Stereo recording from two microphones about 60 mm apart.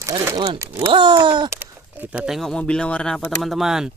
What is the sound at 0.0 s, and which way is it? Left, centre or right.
Speech, right.